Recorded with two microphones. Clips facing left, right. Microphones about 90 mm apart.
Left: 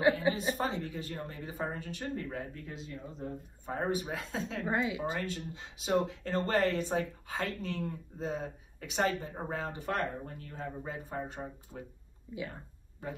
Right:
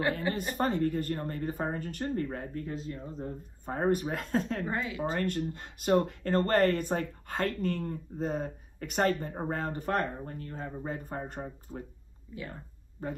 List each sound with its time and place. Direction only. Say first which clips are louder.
0.6 s speech: right 6 dB; 50° right (ahead or behind)
4.6 s speech: left 1 dB; 15° left (ahead or behind)
5.2 s speech: right 7 dB; 55° right (ahead or behind); by 11.0 s 40° right (ahead or behind)
11.1 s speech: right 1 dB; 50° right (ahead or behind)